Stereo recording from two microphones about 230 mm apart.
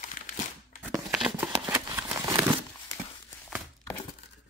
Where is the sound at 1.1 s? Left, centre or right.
Centre.